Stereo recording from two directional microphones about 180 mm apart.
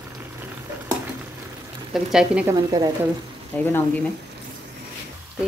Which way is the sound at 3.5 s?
10° left (ahead or behind).